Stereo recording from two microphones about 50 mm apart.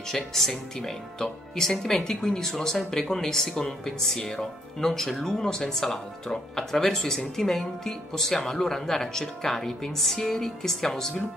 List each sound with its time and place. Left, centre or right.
0.1 s speech: centre